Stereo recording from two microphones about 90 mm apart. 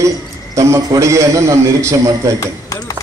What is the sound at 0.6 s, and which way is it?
A man's voice, 40° right (ahead or behind).